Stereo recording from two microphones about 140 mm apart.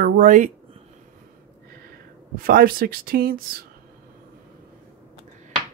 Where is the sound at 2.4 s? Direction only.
90° right.